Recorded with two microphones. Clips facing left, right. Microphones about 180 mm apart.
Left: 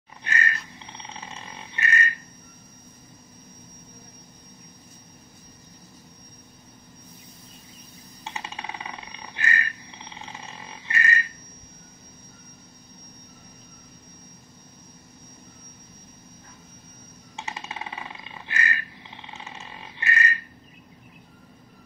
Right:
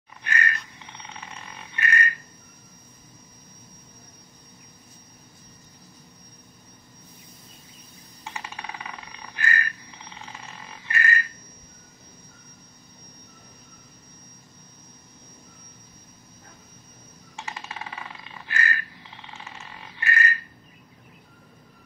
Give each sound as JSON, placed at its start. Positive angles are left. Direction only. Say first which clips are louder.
{"t": 0.2, "sound": "pig", "louder": "even", "side_deg": 25}
{"t": 8.2, "sound": "a sound", "louder": "left 1 dB", "side_deg": 25}
{"t": 17.4, "sound": "bird", "louder": "left 1 dB", "side_deg": 20}